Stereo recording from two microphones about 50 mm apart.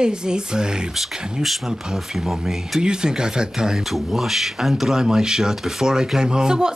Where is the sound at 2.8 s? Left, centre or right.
Centre.